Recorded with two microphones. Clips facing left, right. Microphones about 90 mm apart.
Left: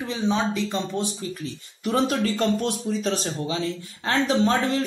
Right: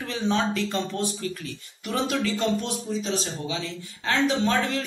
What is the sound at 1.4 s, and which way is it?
Speech, 35° left (ahead or behind).